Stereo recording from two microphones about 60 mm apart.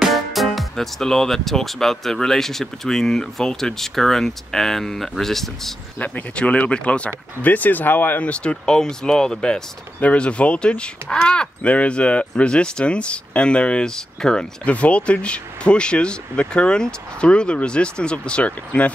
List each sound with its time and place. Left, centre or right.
0.0 s speech: centre
5.9 s speech: left
8.2 s speech: left